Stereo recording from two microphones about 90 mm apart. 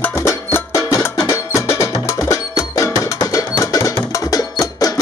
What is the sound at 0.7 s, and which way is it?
Music, 40° left (ahead or behind).